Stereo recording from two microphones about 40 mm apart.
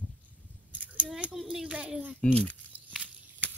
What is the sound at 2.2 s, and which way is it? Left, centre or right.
Speech, left.